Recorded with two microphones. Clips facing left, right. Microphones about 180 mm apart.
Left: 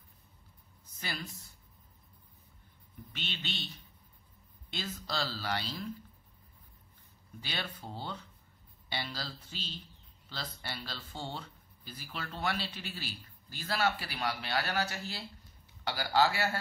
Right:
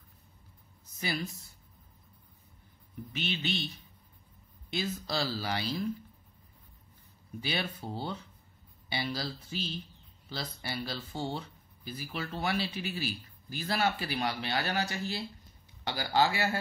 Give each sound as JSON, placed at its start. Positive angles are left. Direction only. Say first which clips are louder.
{"t": 3.2, "sound": "speech", "louder": "right 8 dB", "side_deg": -10}
{"t": 4.7, "sound": "speech", "louder": "right 4 dB", "side_deg": -10}
{"t": 7.4, "sound": "speech", "louder": "right 6 dB", "side_deg": -10}